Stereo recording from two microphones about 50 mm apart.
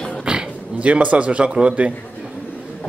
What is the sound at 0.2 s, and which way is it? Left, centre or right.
Speech, centre.